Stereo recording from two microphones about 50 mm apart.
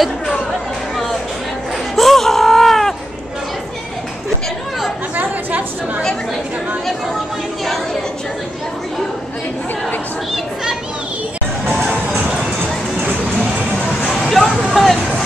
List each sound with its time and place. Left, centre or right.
2.0 s music: centre
5.1 s a sound: right
14.1 s vehicle: centre
14.7 s hubbub: centre